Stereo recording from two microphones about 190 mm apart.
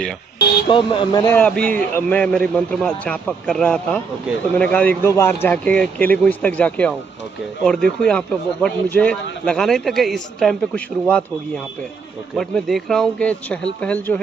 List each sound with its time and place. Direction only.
0.7 s speech: 25° left (ahead or behind)
1.3 s a man's voice: 5° left (ahead or behind)
1.6 s a man's voice: 45° right (ahead or behind)
2.0 s a man's voice: 5° left (ahead or behind)